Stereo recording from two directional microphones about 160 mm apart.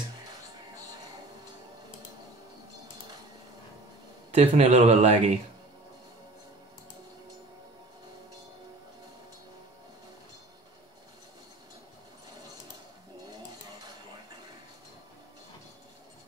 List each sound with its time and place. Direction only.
4.3 s speech: 40° right (ahead or behind)